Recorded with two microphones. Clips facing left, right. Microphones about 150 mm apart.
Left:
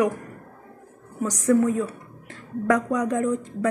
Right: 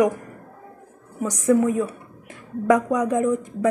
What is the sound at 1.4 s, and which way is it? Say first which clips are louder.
A woman's voice: right 1 dB; 15° right (ahead or behind).